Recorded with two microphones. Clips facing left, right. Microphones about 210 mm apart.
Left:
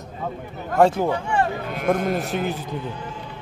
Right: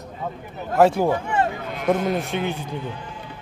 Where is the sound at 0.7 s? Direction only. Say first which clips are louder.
Right 1 dB; 5° right (ahead or behind).